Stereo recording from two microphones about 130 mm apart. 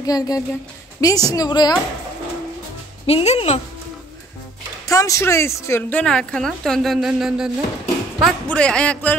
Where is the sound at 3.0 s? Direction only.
55° left (ahead or behind).